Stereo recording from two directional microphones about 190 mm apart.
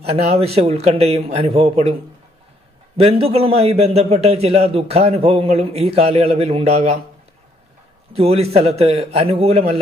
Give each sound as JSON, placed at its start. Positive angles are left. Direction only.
{"t": 0.1, "sound": "a man's voice", "side_deg": -35}
{"t": 3.0, "sound": "a man's voice", "side_deg": -30}
{"t": 8.1, "sound": "a man's voice", "side_deg": -30}